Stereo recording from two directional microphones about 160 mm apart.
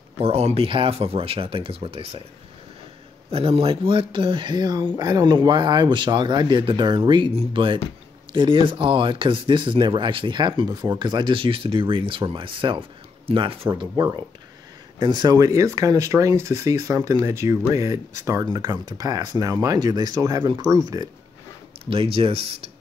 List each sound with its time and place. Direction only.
0.2 s speech: 40° right (ahead or behind)
3.3 s speech: 40° right (ahead or behind); by 21.1 s 25° right (ahead or behind)
21.8 s speech: 35° right (ahead or behind)